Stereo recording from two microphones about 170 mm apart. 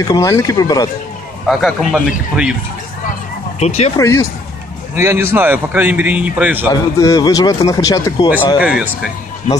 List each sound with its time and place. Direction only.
0.1 s speech: 20° left (ahead or behind)
1.5 s a man's voice: centre (ahead or behind)
3.5 s speech: 40° left (ahead or behind)
4.0 s speech: 15° left (ahead or behind)
4.9 s a man's voice: 15° right (ahead or behind)
6.7 s speech: 20° left (ahead or behind)
8.5 s a man's voice: 5° right (ahead or behind)